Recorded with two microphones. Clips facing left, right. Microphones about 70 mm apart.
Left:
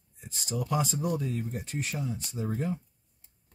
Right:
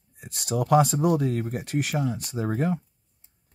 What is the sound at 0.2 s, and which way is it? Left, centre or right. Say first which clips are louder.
Speech: right 7 dB; right.